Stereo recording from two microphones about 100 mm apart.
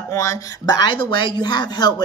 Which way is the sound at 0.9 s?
55° left (ahead or behind).